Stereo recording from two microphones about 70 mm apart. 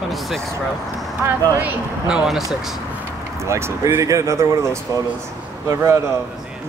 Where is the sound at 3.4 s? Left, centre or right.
Right.